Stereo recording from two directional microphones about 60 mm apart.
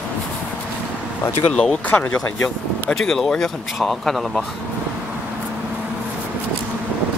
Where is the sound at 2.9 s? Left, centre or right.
Centre.